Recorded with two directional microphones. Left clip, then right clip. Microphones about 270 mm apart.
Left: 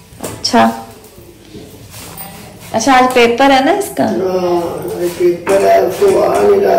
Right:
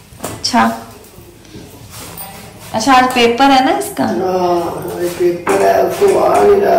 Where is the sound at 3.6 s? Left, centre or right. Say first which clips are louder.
Left 1 dB; centre.